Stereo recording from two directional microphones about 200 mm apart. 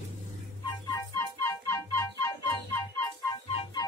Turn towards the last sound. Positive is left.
turn(degrees=30)  # may be behind; listen again after turning